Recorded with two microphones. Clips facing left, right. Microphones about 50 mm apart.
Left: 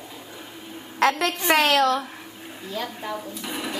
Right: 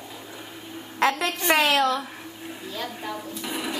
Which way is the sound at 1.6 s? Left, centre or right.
Right.